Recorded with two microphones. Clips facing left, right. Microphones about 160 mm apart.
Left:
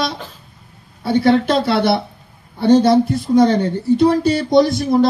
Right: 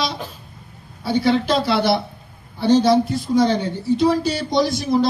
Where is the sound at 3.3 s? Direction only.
55° left (ahead or behind).